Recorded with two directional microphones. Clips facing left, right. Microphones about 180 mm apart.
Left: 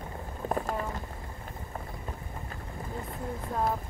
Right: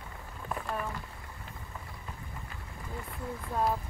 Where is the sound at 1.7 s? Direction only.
45° left (ahead or behind).